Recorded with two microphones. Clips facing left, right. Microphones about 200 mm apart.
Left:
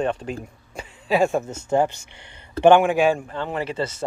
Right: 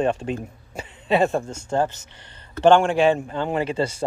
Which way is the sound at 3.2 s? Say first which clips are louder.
Right 3 dB; 30° right (ahead or behind).